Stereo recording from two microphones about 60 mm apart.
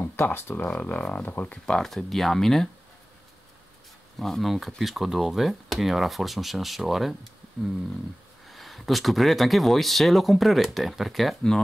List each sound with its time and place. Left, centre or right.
0.0 s speech: left
1.8 s speech: centre
4.2 s speech: centre
8.5 s speech: centre